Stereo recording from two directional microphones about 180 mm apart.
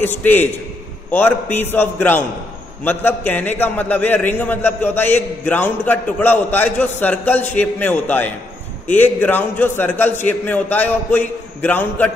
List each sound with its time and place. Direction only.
0.2 s a man's voice: 10° left (ahead or behind)